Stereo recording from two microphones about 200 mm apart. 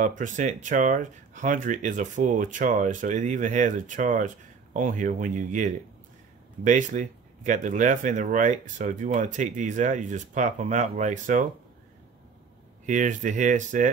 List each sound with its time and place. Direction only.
0.0 s speech: 40° right (ahead or behind)
12.8 s speech: 40° right (ahead or behind)